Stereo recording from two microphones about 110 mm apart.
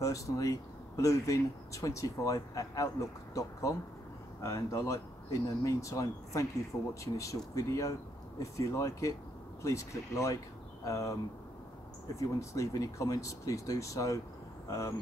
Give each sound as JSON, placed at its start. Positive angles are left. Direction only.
{"t": 0.0, "sound": "speech", "side_deg": 30}
{"t": 12.2, "sound": "speech", "side_deg": 30}